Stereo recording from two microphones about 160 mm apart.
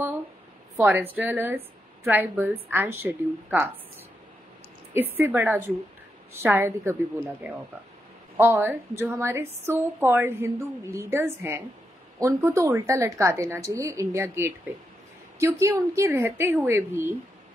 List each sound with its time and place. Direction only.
0.7 s a woman's voice: 15° right (ahead or behind)
5.1 s a woman's voice: 10° right (ahead or behind)
8.4 s a woman's voice: 15° right (ahead or behind)